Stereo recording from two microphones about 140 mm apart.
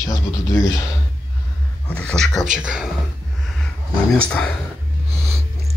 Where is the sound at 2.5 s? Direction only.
5° right (ahead or behind).